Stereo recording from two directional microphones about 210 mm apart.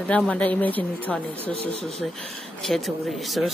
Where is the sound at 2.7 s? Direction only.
Centre (ahead or behind).